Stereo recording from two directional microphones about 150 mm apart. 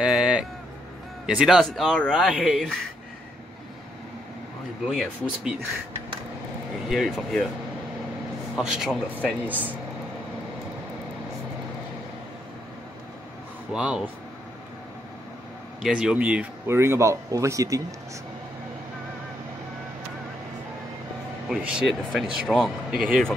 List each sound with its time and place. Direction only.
0.0 s music: 5° right (ahead or behind)
1.2 s speech: 5° right (ahead or behind)
4.8 s speech: 5° right (ahead or behind)
6.9 s speech: centre (ahead or behind)
8.5 s speech: 5° right (ahead or behind)
13.7 s speech: 5° right (ahead or behind)
15.8 s speech: 5° right (ahead or behind); by 17.8 s 20° right (ahead or behind)
21.5 s speech: 5° right (ahead or behind)